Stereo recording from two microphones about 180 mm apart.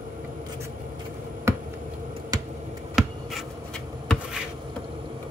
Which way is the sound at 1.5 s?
15° right (ahead or behind).